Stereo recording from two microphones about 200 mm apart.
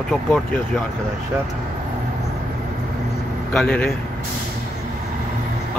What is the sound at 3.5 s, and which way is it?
Speech, 5° left (ahead or behind).